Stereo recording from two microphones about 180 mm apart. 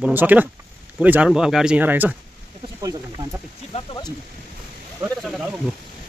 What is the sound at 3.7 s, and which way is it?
Speech, 25° left (ahead or behind).